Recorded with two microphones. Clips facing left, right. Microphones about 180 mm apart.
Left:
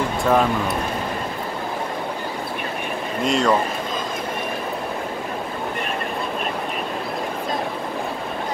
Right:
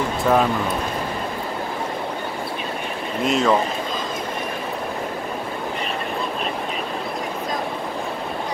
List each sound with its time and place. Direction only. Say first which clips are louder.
0.2 s speech: even; centre (ahead or behind)
3.3 s speech: even; centre (ahead or behind)